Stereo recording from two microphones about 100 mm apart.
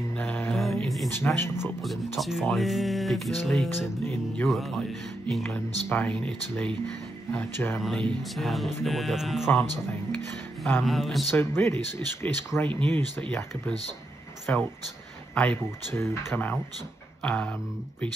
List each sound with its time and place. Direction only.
0.2 s mantra: 20° left (ahead or behind)
0.5 s a sound: centre (ahead or behind)
1.2 s speech: 25° left (ahead or behind)
2.1 s speech: centre (ahead or behind)
5.4 s speech: 20° left (ahead or behind)
7.3 s speech: 20° left (ahead or behind)
7.8 s speech: centre (ahead or behind)
10.6 s speech: centre (ahead or behind)
11.3 s speech: 25° left (ahead or behind)
12.6 s speech: 10° left (ahead or behind)
15.9 s speech: 25° left (ahead or behind); by 17.6 s 10° left (ahead or behind)